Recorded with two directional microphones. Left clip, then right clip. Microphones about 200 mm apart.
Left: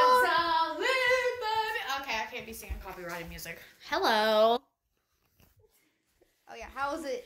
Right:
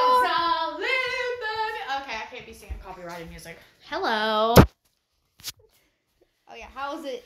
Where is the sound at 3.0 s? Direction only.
5° right (ahead or behind).